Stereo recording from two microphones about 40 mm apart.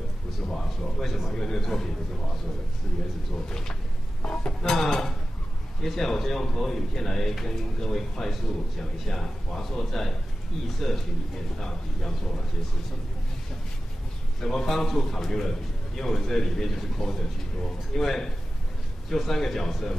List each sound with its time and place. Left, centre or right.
0.5 s a man's voice: centre
3.4 s a man's voice: centre
11.5 s a man's voice: centre
14.4 s a man's voice: centre